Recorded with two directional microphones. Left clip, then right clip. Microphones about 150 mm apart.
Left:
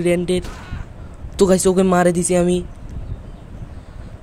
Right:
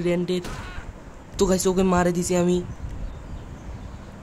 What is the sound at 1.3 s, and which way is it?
Speech, 25° left (ahead or behind).